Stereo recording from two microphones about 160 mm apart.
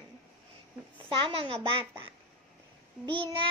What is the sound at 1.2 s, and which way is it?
Child singing, 35° right (ahead or behind).